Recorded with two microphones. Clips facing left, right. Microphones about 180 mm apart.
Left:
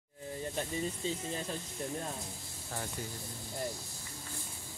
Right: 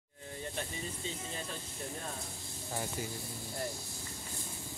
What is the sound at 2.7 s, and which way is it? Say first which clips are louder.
Speech: right 2 dB; 10° right (ahead or behind).